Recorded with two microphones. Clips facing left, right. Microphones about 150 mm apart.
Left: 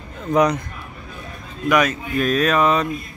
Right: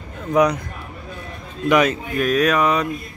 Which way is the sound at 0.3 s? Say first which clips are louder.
Even; 10° right (ahead or behind).